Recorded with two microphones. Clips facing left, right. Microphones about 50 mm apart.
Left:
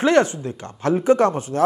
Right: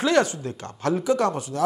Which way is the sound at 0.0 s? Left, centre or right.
Left.